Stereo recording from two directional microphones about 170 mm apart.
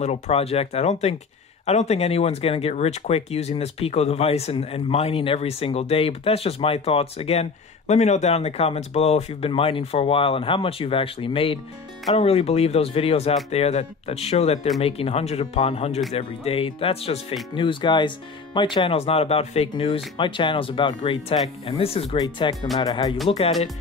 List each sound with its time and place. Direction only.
0.0 s speech: 40° left (ahead or behind)